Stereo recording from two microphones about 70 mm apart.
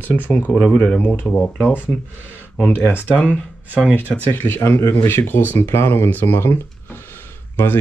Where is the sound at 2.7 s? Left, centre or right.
Left.